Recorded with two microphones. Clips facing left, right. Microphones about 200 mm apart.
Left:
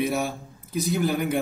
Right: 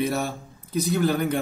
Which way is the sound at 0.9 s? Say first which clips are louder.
Right 2 dB; 15° left (ahead or behind).